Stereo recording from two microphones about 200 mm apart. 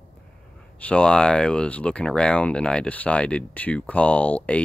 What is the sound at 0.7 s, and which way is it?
Speech, 5° left (ahead or behind).